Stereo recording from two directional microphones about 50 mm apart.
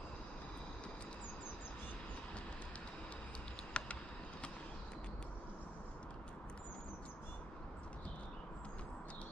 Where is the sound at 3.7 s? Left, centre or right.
Left.